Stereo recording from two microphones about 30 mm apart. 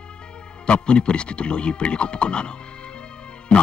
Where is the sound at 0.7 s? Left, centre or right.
Left.